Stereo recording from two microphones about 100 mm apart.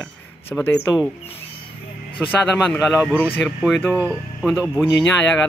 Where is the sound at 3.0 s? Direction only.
15° left (ahead or behind).